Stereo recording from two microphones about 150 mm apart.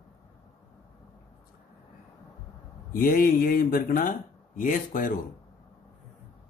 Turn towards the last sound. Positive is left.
turn(degrees=65)  # may be behind; listen again after turning